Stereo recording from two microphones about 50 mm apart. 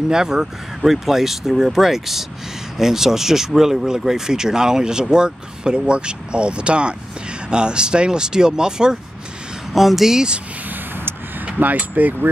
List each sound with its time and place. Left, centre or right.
0.1 s speech: centre
9.8 s speech: centre
11.4 s speech: right